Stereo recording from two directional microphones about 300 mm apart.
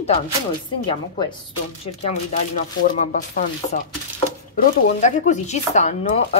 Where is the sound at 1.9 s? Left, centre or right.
Centre.